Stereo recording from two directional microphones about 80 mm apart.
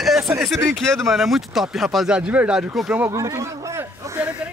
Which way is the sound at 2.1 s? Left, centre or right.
Centre.